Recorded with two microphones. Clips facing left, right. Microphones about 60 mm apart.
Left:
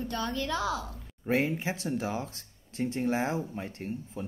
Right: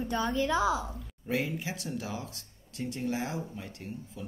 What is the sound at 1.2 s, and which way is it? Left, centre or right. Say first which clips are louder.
Speech: left 4 dB; left.